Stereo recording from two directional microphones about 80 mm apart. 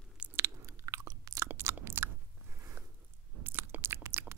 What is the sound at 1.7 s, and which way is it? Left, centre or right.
Biting, right.